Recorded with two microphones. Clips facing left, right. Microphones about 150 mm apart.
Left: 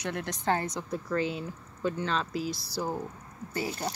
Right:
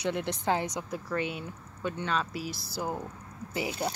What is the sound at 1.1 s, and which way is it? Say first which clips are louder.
Speech: left 2 dB; 35° left (ahead or behind).